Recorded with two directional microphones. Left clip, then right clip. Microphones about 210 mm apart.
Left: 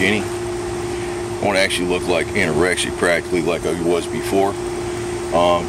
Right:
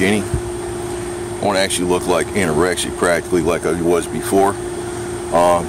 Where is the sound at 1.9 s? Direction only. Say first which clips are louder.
Right 2 dB; 20° right (ahead or behind).